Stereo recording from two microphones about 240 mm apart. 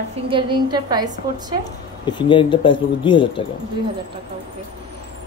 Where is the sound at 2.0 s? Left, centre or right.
Centre.